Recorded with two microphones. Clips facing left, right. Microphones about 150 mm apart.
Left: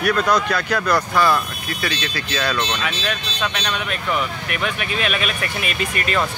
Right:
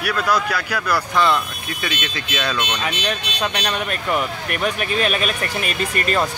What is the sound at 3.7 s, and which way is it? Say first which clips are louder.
Speech: right 1 dB; 45° right (ahead or behind).